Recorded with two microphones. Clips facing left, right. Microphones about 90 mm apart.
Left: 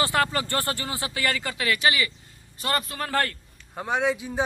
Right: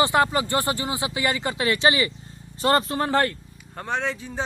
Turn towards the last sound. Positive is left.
turn(degrees=10)  # may be behind; listen again after turning